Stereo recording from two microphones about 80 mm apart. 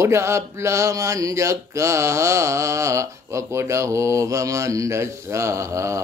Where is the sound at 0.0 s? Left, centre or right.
Right.